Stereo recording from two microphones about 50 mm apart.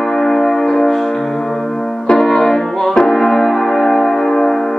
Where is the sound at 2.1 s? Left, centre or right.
Centre.